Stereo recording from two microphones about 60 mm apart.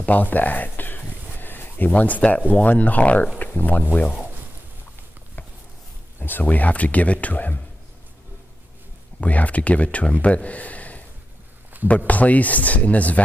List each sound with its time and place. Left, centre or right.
0.0 s speech: left
6.1 s speech: left
9.2 s speech: left
12.1 s speech: left